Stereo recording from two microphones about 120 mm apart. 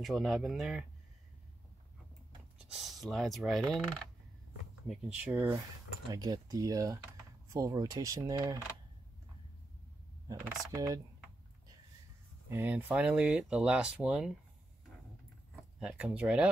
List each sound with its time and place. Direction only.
0.0 s speech: centre (ahead or behind)
2.6 s speech: centre (ahead or behind)
5.2 s speech: 15° right (ahead or behind)
6.0 s speech: 35° right (ahead or behind)
10.7 s speech: 25° right (ahead or behind)
12.4 s speech: 15° right (ahead or behind)
15.8 s speech: 5° right (ahead or behind)